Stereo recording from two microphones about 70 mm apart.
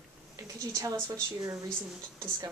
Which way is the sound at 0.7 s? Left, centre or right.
Right.